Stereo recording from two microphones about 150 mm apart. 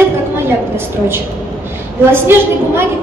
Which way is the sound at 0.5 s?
15° right (ahead or behind).